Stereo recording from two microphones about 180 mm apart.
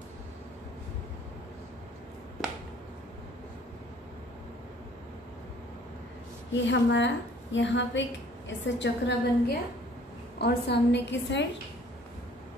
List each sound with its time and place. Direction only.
6.5 s a woman's voice: 85° left